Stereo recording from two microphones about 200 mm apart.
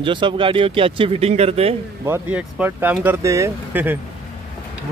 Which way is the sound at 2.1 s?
5° right (ahead or behind).